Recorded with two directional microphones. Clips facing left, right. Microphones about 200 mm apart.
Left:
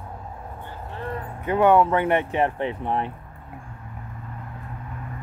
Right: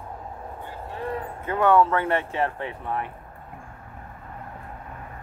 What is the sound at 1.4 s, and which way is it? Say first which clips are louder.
Speech: left 2 dB; 20° left (ahead or behind).